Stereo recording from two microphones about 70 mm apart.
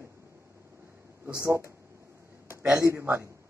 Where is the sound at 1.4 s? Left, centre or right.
Right.